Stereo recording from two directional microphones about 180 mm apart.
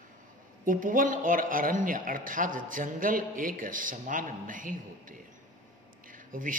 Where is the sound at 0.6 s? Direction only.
50° right (ahead or behind).